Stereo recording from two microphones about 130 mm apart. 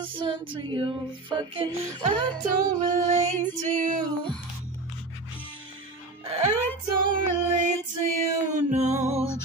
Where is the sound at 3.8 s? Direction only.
90° right.